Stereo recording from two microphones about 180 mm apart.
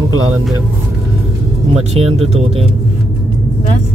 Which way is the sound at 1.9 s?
35° right (ahead or behind).